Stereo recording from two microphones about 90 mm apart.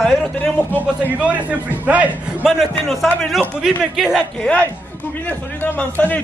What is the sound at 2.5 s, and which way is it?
A man's voice, centre (ahead or behind).